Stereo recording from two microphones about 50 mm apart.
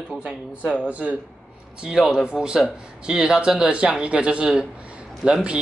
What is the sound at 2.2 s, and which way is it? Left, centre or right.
A man's voice, centre.